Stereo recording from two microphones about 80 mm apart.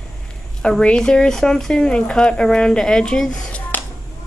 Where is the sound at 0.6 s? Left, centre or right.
Centre.